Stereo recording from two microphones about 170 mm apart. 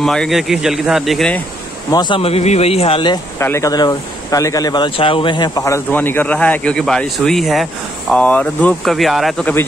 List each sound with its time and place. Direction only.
0.0 s speech: 5° left (ahead or behind)
1.9 s speech: 25° left (ahead or behind)
3.3 s speech: 15° left (ahead or behind); by 9.5 s centre (ahead or behind)